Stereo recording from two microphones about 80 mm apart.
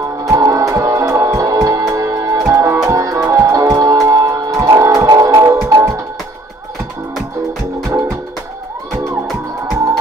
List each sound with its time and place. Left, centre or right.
0.2 s music: right
7.8 s music: right